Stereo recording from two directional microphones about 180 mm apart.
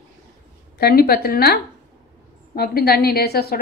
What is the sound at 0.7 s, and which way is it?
A woman's voice, 60° left (ahead or behind).